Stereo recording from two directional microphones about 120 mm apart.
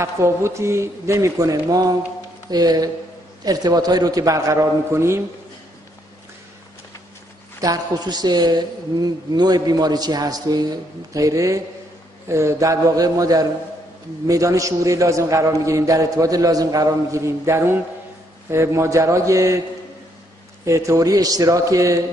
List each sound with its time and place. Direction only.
0.0 s a man's voice: 25° right (ahead or behind)
7.6 s a man's voice: 35° right (ahead or behind)
20.6 s a man's voice: 25° right (ahead or behind)